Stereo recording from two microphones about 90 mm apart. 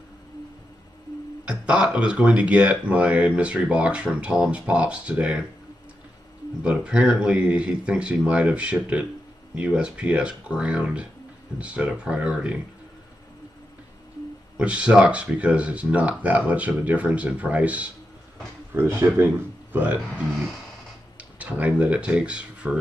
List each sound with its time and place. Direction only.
1.4 s speech: 10° right (ahead or behind)
6.6 s speech: 10° right (ahead or behind)
14.6 s speech: 10° right (ahead or behind)
18.7 s speech: 25° right (ahead or behind)
21.2 s speech: 15° right (ahead or behind)